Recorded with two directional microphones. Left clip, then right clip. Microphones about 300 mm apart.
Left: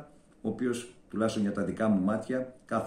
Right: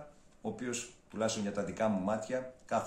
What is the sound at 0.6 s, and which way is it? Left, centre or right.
Speech, centre.